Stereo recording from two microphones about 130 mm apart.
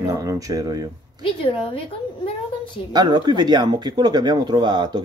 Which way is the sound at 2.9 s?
35° right (ahead or behind).